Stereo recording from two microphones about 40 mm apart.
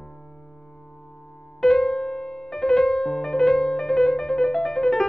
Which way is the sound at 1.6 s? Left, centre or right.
Centre.